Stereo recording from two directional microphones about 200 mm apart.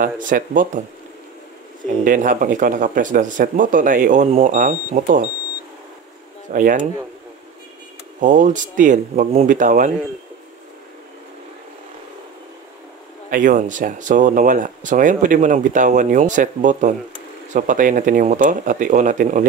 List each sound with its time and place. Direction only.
0.0 s speech: 40° right (ahead or behind)
2.0 s speech: 40° right (ahead or behind)
6.5 s speech: 45° right (ahead or behind)
8.2 s speech: 40° right (ahead or behind)
13.3 s speech: 40° right (ahead or behind)